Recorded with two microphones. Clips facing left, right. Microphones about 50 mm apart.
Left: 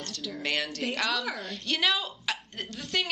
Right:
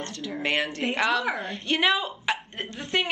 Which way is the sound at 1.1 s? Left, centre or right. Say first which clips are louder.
Right 6 dB; centre.